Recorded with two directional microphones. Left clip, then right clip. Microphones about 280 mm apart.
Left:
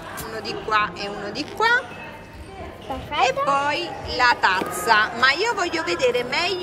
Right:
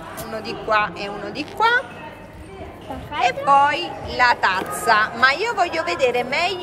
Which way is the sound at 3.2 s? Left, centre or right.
Centre.